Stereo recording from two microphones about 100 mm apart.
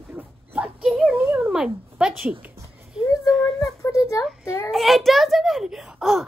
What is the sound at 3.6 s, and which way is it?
Child singing, 35° left (ahead or behind).